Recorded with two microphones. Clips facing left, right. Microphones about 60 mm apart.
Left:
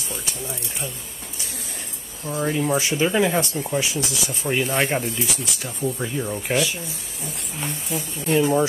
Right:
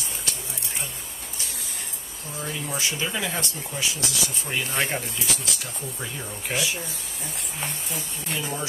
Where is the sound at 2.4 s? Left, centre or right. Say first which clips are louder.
Left 8 dB; left.